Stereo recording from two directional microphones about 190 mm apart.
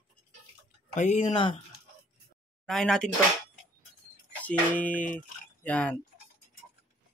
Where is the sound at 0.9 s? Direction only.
40° left (ahead or behind).